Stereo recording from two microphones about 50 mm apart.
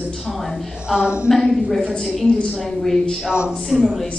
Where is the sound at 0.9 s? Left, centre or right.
Centre.